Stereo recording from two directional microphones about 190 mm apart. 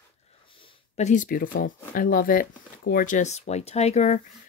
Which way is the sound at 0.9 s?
40° left (ahead or behind).